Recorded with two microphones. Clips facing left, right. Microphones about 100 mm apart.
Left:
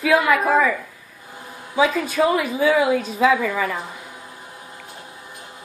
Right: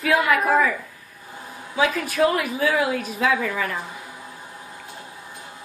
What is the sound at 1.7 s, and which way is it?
A woman's voice, centre (ahead or behind).